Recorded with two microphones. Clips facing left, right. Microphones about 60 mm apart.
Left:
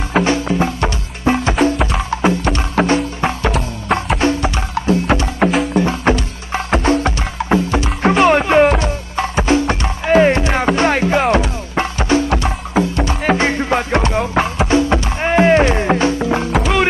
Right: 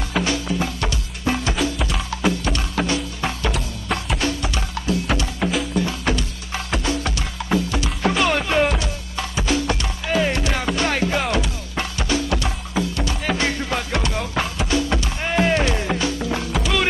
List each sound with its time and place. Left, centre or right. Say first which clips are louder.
0.1 s music: left 7 dB; left
1.5 s music: left 8 dB; left